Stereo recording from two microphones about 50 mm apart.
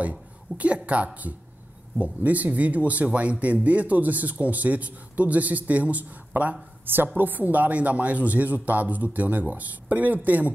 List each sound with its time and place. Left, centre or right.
0.6 s a woman's voice: right